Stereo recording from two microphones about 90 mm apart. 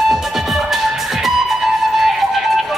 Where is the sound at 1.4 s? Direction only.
5° right (ahead or behind).